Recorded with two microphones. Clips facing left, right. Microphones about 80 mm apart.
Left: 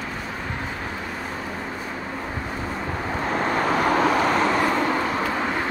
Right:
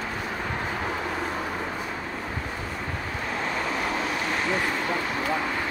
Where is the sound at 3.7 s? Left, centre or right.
Left.